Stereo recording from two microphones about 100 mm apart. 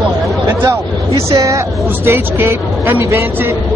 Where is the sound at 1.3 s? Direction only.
30° right (ahead or behind).